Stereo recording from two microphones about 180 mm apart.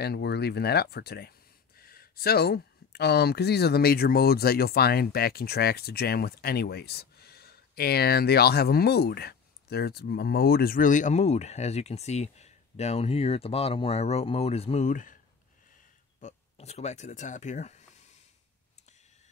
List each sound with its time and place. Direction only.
0.0 s speech: 65° left (ahead or behind); by 15.1 s 45° left (ahead or behind)
16.2 s speech: 40° left (ahead or behind)